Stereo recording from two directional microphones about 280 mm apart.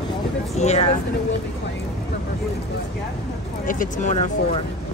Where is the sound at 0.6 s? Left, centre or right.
Left.